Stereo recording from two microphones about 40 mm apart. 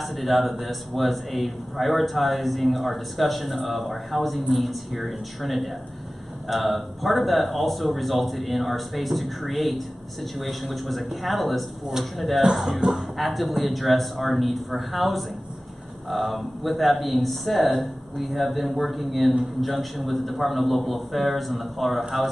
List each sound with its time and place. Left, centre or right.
0.0 s a man's voice: centre